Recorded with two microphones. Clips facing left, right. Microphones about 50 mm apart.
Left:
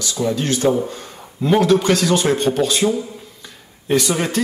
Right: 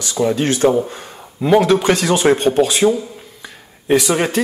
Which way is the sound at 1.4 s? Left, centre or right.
Centre.